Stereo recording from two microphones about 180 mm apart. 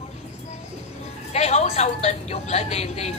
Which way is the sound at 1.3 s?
35° left (ahead or behind).